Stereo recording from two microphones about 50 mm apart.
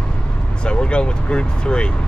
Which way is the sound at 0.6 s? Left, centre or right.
Centre.